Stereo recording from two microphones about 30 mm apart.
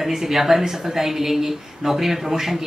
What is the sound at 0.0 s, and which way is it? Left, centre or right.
A woman's voice, centre.